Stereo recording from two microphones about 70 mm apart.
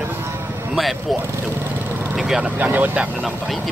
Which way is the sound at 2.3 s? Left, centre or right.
Right.